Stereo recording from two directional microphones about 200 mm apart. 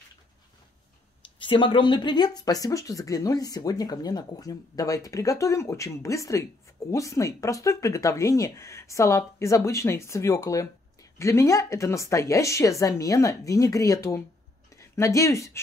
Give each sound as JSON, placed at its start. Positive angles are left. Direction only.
{"t": 1.4, "sound": "speech", "side_deg": 25}